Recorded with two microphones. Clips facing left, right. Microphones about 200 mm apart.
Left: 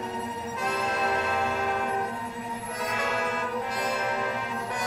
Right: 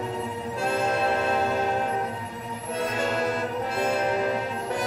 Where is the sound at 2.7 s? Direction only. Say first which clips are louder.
Right 5 dB; 30° right (ahead or behind).